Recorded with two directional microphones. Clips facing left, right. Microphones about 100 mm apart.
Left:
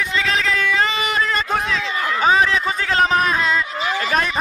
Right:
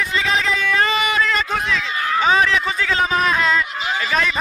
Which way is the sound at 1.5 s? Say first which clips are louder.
Left 1 dB; 45° left (ahead or behind).